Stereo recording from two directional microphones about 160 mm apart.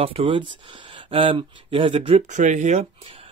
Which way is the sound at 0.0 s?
35° right (ahead or behind).